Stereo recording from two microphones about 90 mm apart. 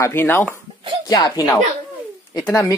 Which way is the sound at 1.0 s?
45° left (ahead or behind).